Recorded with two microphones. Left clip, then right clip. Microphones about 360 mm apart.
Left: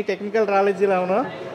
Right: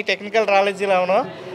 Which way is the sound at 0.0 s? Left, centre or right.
Right.